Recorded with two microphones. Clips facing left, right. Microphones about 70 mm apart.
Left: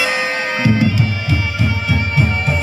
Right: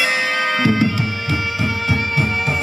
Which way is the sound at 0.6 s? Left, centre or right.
Right.